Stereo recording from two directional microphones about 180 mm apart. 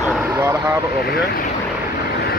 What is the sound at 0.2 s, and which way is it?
Vehicle, 15° right (ahead or behind).